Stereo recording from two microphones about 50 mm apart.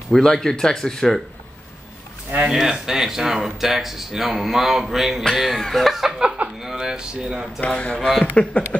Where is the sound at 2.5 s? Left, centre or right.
Centre.